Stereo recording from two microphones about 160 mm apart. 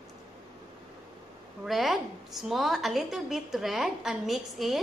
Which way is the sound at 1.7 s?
Centre (ahead or behind).